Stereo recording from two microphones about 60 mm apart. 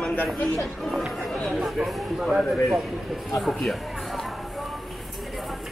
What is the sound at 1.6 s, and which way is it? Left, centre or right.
Speech, centre.